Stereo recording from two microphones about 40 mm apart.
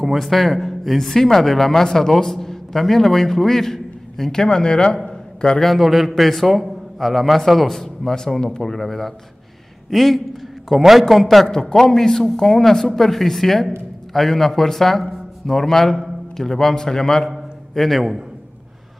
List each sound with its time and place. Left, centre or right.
0.0 s speech: centre; by 5.6 s left
5.6 s a man's voice: centre